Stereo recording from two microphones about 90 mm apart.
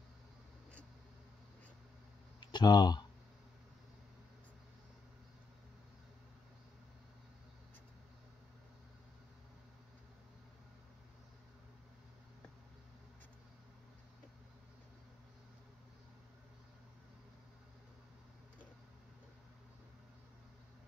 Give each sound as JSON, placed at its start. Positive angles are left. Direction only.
{"t": 2.4, "sound": "speech", "side_deg": 55}